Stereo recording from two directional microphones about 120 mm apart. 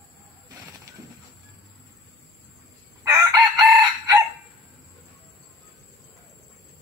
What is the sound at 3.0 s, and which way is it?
Chicken, 25° right (ahead or behind).